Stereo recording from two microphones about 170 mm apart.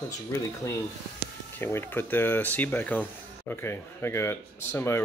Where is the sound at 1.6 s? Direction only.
15° left (ahead or behind).